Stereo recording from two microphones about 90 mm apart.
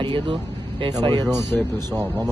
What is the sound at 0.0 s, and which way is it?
Vehicle, 75° right (ahead or behind).